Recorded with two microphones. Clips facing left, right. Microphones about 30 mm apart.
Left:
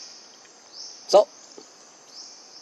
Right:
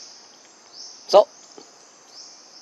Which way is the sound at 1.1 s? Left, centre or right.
Centre.